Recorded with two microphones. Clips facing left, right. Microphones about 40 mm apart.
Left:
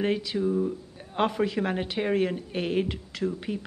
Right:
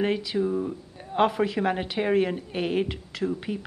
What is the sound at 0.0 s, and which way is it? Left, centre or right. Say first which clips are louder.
Speech: right 1 dB; centre.